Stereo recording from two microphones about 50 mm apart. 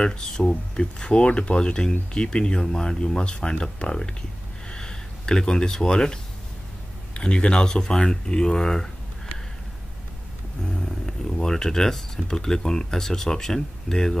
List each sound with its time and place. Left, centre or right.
0.0 s speech: centre
4.6 s a sound: centre
7.2 s speech: centre
10.6 s speech: centre